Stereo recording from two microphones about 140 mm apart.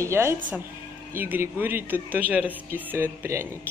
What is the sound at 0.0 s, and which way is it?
Speech, 20° right (ahead or behind).